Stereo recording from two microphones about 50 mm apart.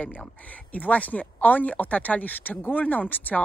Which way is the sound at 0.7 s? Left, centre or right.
Left.